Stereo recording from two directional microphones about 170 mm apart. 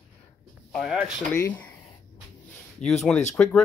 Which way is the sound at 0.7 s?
5° left (ahead or behind).